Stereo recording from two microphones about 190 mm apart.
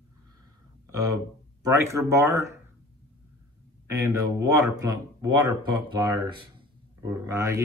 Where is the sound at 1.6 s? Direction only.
15° right (ahead or behind).